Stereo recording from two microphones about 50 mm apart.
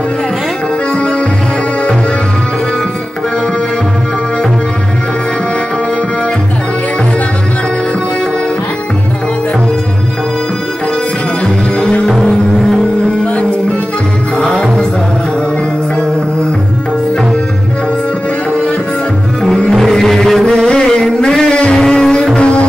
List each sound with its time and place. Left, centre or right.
11.4 s music: left
14.4 s music: centre
19.7 s music: centre